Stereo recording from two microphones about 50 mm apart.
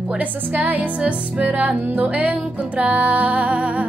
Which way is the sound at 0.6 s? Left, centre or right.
Right.